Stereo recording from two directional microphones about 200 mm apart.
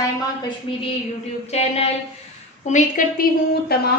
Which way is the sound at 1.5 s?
30° left (ahead or behind).